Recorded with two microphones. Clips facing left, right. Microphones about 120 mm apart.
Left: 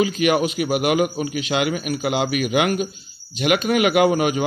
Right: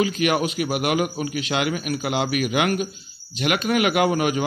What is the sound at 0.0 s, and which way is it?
A man's voice, 20° left (ahead or behind).